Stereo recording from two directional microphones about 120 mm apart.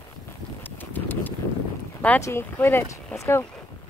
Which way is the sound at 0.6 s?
15° left (ahead or behind).